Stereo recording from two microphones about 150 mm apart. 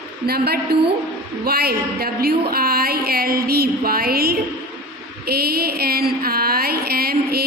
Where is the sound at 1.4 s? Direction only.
90° right.